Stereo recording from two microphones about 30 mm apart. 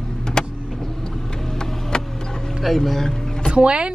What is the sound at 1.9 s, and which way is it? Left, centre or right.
Vehicle, left.